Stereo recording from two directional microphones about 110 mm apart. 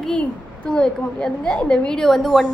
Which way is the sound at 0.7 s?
5° left (ahead or behind).